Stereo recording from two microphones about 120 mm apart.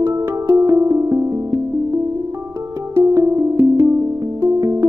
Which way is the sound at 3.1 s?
25° right (ahead or behind).